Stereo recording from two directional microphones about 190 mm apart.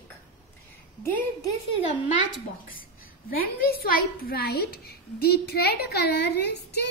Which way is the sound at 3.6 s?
55° left (ahead or behind).